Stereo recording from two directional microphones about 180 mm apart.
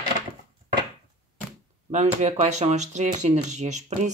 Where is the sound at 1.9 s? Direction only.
40° right (ahead or behind).